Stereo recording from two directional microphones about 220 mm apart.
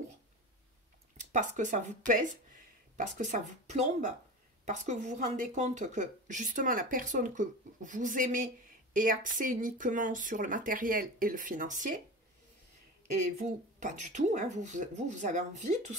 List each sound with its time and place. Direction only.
1.3 s speech: 35° right (ahead or behind)
13.4 s speech: 35° right (ahead or behind)